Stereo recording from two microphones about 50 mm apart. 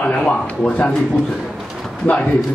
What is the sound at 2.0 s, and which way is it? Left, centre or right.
Speech, left.